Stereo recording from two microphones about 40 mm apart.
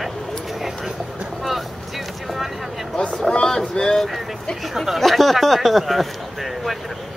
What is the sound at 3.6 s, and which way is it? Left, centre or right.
Speech, centre.